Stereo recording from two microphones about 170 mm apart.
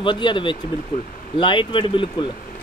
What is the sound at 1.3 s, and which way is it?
Speech, 30° left (ahead or behind).